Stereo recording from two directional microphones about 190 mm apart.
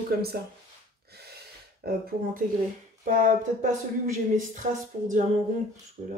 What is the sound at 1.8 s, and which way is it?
Speech, 55° right (ahead or behind).